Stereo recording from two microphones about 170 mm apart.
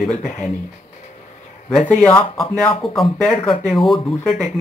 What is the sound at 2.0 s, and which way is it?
Speech, 5° left (ahead or behind).